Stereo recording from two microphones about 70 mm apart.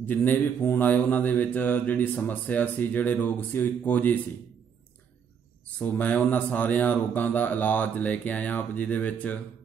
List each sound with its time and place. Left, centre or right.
0.0 s speech: left
5.8 s speech: left